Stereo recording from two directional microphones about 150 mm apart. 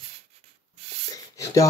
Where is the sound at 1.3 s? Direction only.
20° left (ahead or behind).